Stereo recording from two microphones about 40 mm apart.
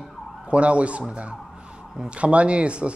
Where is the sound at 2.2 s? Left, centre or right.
Right.